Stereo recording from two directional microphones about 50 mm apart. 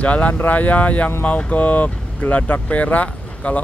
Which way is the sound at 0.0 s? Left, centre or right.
Left.